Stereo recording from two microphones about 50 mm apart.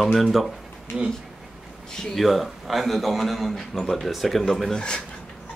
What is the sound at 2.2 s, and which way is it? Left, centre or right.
A man's voice, centre.